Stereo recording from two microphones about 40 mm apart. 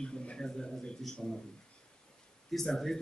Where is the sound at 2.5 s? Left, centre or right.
Centre.